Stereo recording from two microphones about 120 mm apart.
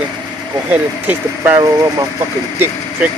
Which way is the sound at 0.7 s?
15° right (ahead or behind).